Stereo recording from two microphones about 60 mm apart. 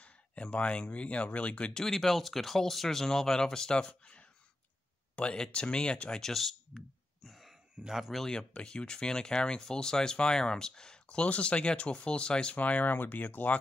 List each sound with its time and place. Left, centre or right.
0.0 s speech: left; by 6.8 s centre
7.2 s a sound: centre
7.8 s speech: centre
8.3 s speech: centre